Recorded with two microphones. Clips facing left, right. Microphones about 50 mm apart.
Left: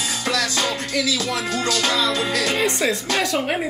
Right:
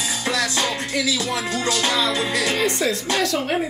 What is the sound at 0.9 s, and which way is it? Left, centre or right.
Music, right.